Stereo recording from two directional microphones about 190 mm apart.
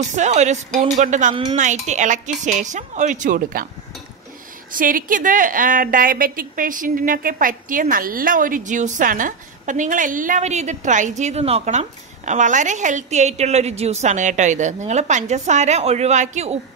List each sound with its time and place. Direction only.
0.1 s a woman's voice: 40° right (ahead or behind)
4.7 s a woman's voice: 45° right (ahead or behind)